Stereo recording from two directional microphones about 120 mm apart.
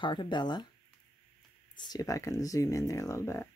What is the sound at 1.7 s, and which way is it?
Speech, 35° left (ahead or behind).